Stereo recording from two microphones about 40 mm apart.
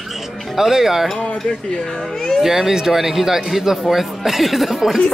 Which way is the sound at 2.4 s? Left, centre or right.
Centre.